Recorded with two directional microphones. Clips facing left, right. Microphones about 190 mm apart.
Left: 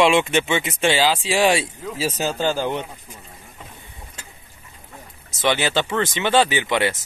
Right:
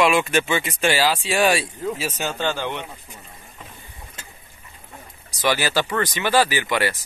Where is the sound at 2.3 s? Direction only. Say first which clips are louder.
Left 3 dB; 10° left (ahead or behind).